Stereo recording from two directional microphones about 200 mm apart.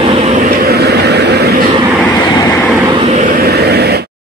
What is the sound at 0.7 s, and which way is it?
Vehicle, 55° right (ahead or behind).